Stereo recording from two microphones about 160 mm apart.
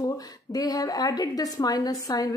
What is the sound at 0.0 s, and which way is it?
Speech, 25° left (ahead or behind).